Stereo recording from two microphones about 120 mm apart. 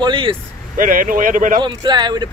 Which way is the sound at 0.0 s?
45° right (ahead or behind).